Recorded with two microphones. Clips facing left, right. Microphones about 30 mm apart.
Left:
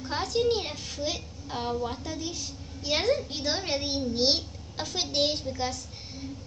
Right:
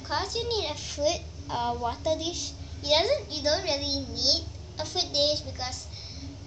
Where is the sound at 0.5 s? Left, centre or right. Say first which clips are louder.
Left 2 dB; right.